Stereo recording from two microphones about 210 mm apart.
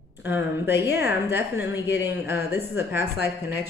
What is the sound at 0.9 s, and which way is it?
Speech, 10° right (ahead or behind).